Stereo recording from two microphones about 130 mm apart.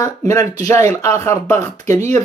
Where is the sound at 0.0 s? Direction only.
30° left (ahead or behind).